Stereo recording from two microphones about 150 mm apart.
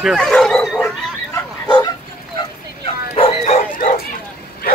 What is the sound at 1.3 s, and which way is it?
Bow-wow, 25° left (ahead or behind).